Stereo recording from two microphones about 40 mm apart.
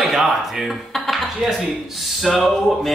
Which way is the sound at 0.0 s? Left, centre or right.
Centre.